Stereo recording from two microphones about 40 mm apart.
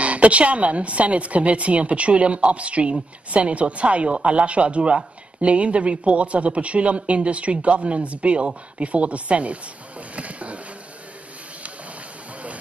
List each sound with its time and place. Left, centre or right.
0.0 s a woman's voice: right